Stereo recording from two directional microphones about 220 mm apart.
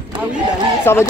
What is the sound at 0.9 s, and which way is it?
Speech, 10° left (ahead or behind).